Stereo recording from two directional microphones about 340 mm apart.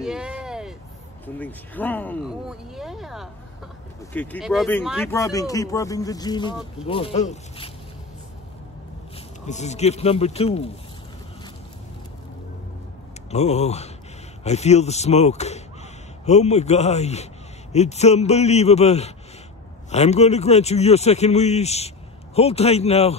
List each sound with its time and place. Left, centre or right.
0.0 s a sound: centre
1.2 s speech: centre
9.5 s speech: centre
13.3 s a man's voice: centre